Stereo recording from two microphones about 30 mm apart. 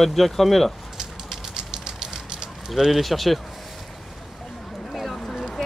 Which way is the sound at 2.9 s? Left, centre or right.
Centre.